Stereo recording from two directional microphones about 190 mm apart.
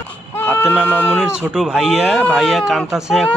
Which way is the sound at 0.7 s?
5° left (ahead or behind).